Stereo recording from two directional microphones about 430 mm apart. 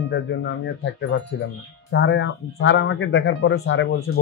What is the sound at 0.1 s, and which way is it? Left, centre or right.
Speech, left.